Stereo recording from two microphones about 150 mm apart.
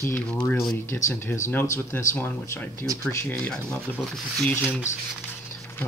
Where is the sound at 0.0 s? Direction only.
10° left (ahead or behind).